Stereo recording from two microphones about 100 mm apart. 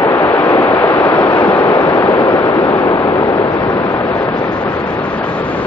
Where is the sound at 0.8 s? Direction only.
30° left (ahead or behind).